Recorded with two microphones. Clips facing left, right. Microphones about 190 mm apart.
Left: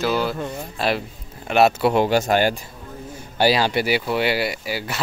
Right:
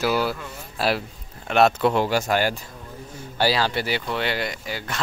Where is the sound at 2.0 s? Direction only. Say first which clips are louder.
Left 4 dB; 20° left (ahead or behind).